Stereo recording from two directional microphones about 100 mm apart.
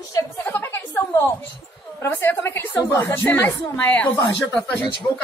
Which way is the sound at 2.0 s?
20° left (ahead or behind).